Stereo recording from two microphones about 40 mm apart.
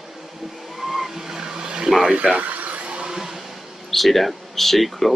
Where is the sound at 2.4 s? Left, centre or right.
Right.